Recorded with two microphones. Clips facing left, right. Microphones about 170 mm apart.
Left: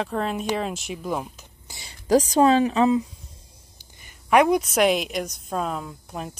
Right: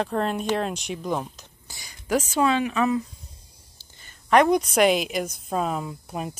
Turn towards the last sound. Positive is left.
turn(degrees=-5)  # may be behind; listen again after turning